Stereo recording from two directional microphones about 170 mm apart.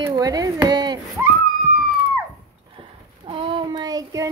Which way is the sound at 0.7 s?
25° right (ahead or behind).